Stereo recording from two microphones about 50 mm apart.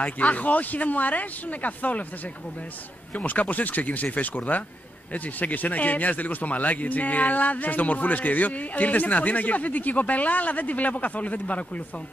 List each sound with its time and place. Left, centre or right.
0.0 s a man's voice: left
3.2 s a man's voice: left